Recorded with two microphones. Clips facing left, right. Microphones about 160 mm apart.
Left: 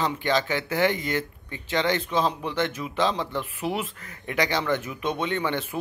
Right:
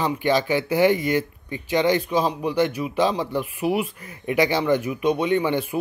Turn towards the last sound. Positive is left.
turn(degrees=-15)  # may be behind; listen again after turning